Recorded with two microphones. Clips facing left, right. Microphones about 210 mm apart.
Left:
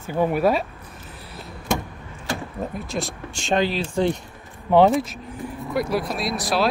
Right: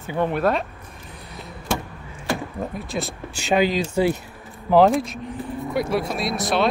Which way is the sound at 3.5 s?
10° right (ahead or behind).